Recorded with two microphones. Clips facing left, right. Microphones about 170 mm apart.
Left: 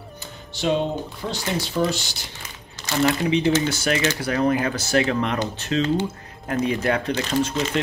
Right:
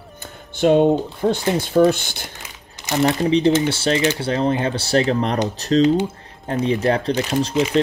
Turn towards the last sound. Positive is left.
turn(degrees=-10)  # may be behind; listen again after turning